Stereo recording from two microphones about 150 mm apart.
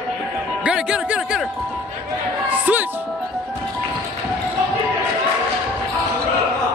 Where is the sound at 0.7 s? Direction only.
5° right (ahead or behind).